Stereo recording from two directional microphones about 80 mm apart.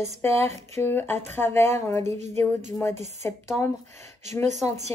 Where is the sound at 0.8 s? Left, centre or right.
Left.